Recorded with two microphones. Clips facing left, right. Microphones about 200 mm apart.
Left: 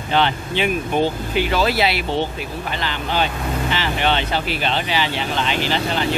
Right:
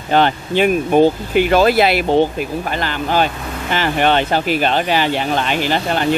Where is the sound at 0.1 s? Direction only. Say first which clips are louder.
Right 5 dB; 45° right (ahead or behind).